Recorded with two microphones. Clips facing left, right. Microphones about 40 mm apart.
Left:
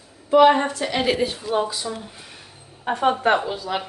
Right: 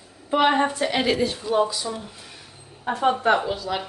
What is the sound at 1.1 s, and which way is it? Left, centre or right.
Speech, centre.